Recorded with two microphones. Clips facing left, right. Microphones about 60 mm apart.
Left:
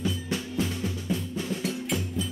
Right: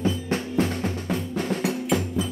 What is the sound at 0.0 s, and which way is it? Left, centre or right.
Drum, right.